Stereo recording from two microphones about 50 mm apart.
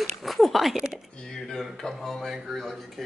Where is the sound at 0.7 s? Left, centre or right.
Centre.